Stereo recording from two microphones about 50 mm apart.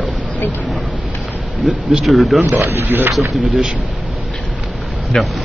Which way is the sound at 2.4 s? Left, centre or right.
Right.